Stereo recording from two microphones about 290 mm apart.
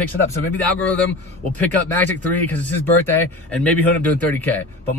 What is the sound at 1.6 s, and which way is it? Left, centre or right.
Speech, centre.